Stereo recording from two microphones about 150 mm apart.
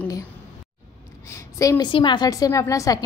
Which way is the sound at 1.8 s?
30° left (ahead or behind).